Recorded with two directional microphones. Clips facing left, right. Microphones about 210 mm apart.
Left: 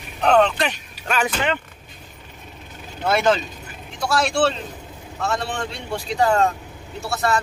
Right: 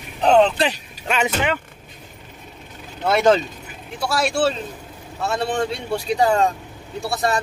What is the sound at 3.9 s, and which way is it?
Speech, centre (ahead or behind).